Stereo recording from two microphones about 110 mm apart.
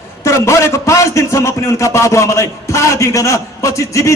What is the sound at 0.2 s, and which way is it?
A man's voice, 25° left (ahead or behind).